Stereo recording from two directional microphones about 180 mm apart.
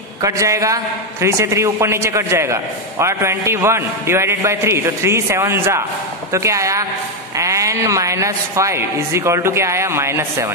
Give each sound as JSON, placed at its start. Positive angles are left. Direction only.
{"t": 0.2, "sound": "a man's voice", "side_deg": -15}